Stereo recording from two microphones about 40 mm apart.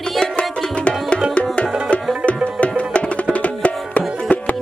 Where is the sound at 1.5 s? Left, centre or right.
Left.